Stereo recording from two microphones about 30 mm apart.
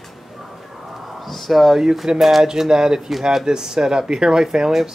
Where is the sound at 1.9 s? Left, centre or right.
Centre.